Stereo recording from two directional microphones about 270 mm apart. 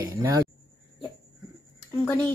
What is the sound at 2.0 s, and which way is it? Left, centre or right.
Speech, centre.